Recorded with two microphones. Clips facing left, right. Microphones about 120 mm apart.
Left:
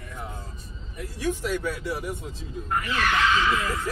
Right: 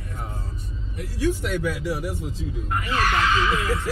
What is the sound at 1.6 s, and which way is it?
Speech, 80° right.